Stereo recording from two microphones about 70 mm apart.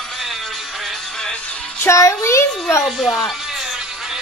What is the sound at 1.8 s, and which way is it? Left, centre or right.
A child's voice, left.